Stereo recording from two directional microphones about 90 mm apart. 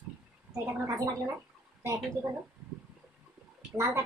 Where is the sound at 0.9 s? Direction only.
40° right (ahead or behind).